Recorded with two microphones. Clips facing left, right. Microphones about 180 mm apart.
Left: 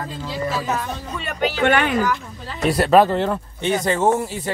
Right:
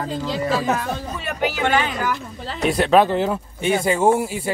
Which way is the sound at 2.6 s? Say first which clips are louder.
Left 1 dB; centre (ahead or behind).